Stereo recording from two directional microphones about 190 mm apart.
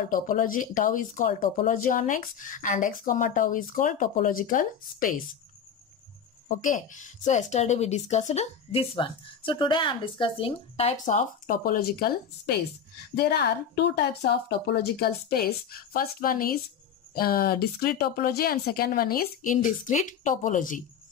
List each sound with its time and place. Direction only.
0.1 s speech: 45° left (ahead or behind)
6.6 s speech: 45° left (ahead or behind)